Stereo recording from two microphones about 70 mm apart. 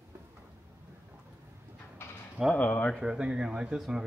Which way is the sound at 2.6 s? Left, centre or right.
Left.